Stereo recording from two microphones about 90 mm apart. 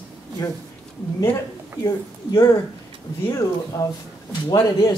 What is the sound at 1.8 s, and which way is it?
Speech, 45° left (ahead or behind).